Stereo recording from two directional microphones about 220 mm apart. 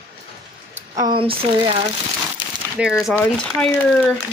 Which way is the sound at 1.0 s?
20° right (ahead or behind).